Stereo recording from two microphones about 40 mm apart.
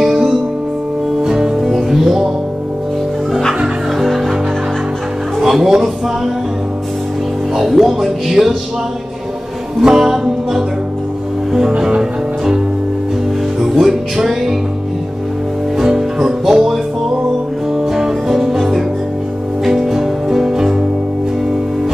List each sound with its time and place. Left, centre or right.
0.0 s music: centre
1.7 s music: centre
5.4 s music: centre
7.5 s speech: centre
9.8 s music: centre
13.6 s music: centre
15.8 s music: centre